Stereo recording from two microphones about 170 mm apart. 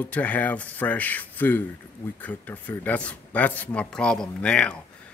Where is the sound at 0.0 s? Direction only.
10° left (ahead or behind).